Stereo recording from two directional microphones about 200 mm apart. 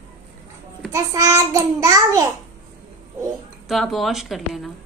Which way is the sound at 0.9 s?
15° right (ahead or behind).